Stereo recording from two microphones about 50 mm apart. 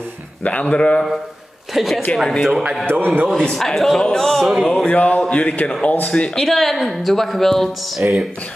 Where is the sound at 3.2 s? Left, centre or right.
Centre.